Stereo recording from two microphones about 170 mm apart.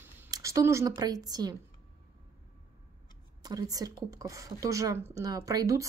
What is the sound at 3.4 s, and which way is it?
Speech, 20° right (ahead or behind).